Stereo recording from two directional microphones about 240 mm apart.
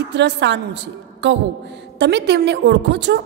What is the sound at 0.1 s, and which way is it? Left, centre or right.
A woman's voice, right.